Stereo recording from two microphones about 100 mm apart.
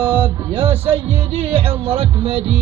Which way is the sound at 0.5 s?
70° right (ahead or behind).